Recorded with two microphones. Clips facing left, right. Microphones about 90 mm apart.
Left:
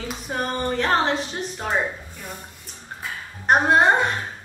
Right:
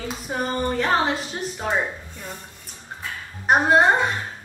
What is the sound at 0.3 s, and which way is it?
A woman's voice, 5° right (ahead or behind).